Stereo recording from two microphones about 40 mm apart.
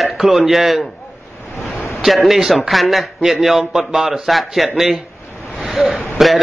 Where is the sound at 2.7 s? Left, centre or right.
Centre.